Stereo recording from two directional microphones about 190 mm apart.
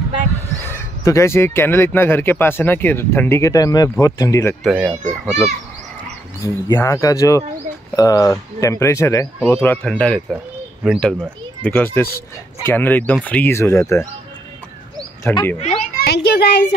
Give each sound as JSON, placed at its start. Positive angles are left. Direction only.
{"t": 0.7, "sound": "speech", "side_deg": 15}
{"t": 4.6, "sound": "a child's voice", "side_deg": -5}
{"t": 6.4, "sound": "speech", "side_deg": 15}
{"t": 15.3, "sound": "speech", "side_deg": 5}
{"t": 15.6, "sound": "children playing", "side_deg": 35}
{"t": 16.0, "sound": "a child's voice", "side_deg": 60}